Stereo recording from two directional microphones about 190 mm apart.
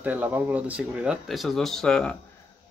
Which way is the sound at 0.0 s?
10° right (ahead or behind).